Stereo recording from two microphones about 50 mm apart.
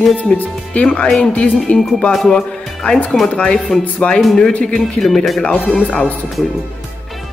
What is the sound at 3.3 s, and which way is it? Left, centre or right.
Speech, left.